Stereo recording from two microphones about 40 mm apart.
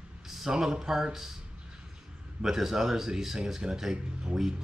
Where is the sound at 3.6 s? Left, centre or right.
Centre.